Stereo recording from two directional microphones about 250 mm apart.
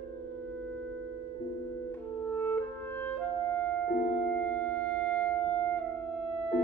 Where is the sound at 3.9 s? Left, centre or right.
Left.